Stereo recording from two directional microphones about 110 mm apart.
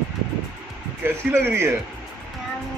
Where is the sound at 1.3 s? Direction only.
20° right (ahead or behind).